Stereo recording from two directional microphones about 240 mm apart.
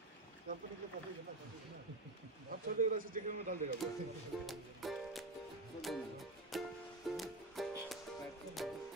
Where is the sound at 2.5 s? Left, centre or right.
Right.